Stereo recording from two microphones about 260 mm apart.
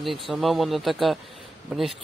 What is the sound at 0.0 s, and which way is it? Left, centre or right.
Speech, centre.